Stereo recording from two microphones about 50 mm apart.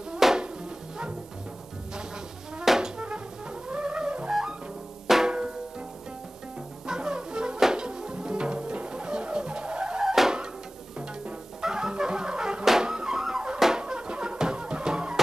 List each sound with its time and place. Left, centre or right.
0.2 s music: centre
2.6 s music: centre
3.6 s music: centre
5.0 s drum: centre
6.9 s music: centre
11.6 s music: centre